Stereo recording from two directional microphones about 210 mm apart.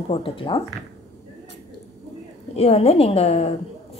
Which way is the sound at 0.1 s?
25° left (ahead or behind).